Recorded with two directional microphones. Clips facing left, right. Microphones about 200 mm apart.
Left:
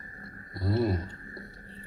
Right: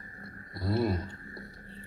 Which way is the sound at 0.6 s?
25° left (ahead or behind).